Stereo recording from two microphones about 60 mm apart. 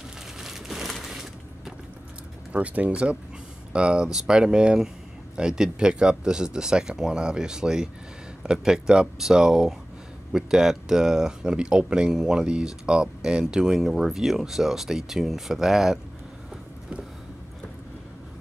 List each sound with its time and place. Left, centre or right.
0.4 s crumpling: centre
2.5 s speech: right; by 16.0 s centre